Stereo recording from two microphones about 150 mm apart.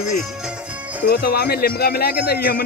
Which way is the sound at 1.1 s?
90° left.